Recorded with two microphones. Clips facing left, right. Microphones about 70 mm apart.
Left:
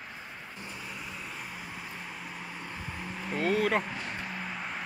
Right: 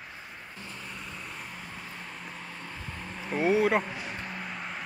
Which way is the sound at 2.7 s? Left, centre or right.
Centre.